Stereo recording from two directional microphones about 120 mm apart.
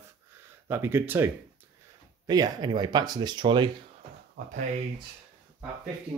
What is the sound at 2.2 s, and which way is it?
Speech, 35° right (ahead or behind).